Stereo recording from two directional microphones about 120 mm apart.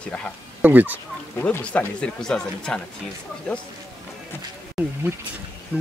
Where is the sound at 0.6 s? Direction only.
15° right (ahead or behind).